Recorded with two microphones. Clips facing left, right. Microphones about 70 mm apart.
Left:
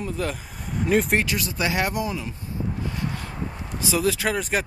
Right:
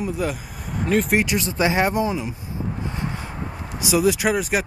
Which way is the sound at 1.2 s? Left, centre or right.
Right.